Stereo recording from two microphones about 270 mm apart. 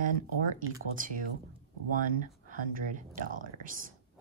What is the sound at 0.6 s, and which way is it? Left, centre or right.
Speech, right.